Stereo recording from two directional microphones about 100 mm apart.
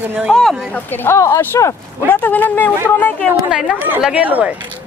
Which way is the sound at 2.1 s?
20° left (ahead or behind).